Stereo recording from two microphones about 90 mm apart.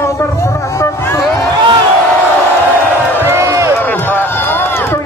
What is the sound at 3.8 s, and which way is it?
Run, 20° left (ahead or behind).